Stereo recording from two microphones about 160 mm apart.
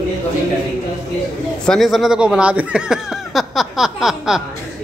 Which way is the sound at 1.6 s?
Centre (ahead or behind).